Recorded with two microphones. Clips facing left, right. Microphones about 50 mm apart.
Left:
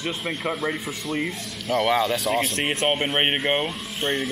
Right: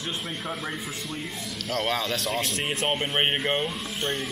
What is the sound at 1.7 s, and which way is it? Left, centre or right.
Speech, left.